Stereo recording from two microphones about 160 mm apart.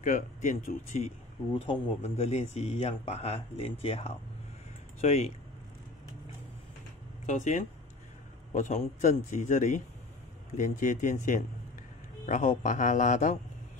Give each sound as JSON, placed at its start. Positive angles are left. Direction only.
{"t": 0.0, "sound": "a man's voice", "side_deg": 50}
{"t": 1.5, "sound": "a man's voice", "side_deg": 35}
{"t": 7.2, "sound": "a man's voice", "side_deg": 50}